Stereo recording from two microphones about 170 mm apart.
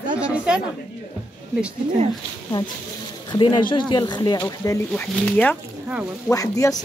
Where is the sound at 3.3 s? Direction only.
30° left (ahead or behind).